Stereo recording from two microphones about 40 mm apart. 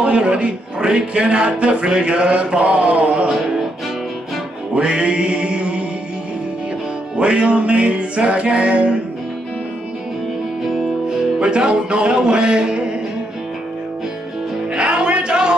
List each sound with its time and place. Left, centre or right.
0.0 s speech: right
4.7 s music: right
7.2 s speech: right
10.6 s music: centre
11.1 s music: centre
14.7 s music: right